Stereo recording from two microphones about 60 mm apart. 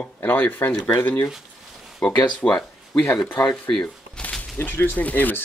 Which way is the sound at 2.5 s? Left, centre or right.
Centre.